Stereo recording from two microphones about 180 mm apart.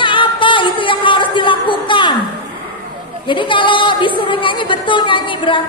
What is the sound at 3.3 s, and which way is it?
Speech, 25° left (ahead or behind).